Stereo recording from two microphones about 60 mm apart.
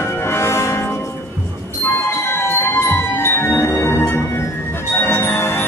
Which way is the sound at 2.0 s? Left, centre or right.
Left.